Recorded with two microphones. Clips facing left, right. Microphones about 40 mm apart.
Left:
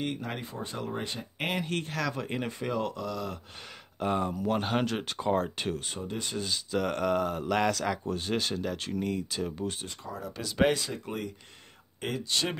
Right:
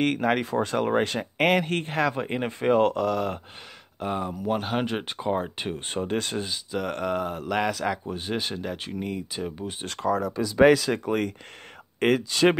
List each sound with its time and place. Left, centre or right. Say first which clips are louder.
0.0 s speech: right 11 dB; right
2.6 s speech: right 14 dB; right
4.0 s speech: even; centre
4.8 s speech: right 2 dB; right
5.8 s speech: right 8 dB; right
6.4 s speech: even; centre
9.8 s speech: right 14 dB; right
10.9 s speech: right 10 dB; right